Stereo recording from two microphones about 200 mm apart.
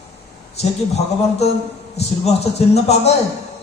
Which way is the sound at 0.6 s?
30° left (ahead or behind).